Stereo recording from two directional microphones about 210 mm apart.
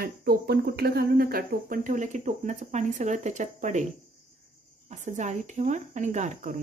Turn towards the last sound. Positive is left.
turn(degrees=-35)  # may be behind; listen again after turning